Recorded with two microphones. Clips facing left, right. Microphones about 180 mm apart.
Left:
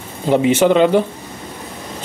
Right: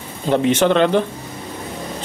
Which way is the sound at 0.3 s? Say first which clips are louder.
Left 2 dB; 10° left (ahead or behind).